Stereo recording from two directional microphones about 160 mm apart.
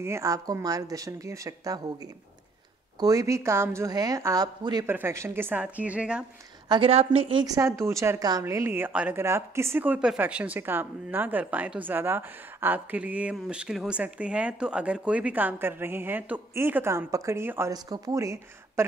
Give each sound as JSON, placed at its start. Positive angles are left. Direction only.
{"t": 0.0, "sound": "a woman's voice", "side_deg": -20}
{"t": 3.0, "sound": "a woman's voice", "side_deg": -20}
{"t": 6.7, "sound": "a woman's voice", "side_deg": -35}